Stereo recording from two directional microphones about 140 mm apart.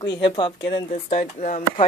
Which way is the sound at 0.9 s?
55° left (ahead or behind).